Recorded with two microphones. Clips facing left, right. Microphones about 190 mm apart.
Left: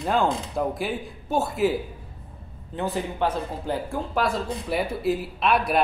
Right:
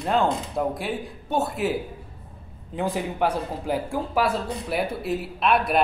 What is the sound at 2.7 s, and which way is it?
Speech, 10° right (ahead or behind).